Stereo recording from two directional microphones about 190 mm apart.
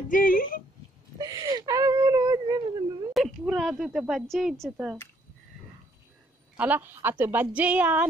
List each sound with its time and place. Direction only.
0.1 s speech: 45° left (ahead or behind)
1.1 s whimper: 20° right (ahead or behind)
3.1 s a woman's voice: centre (ahead or behind)
6.5 s a woman's voice: 10° right (ahead or behind)